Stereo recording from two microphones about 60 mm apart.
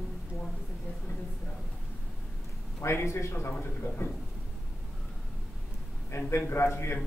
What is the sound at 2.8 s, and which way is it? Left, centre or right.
A man's voice, left.